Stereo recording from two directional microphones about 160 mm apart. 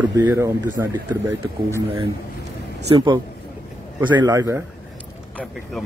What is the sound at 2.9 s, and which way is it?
A man's voice, 30° right (ahead or behind).